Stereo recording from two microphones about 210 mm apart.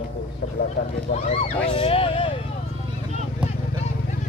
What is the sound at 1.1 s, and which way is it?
Speech, 25° left (ahead or behind).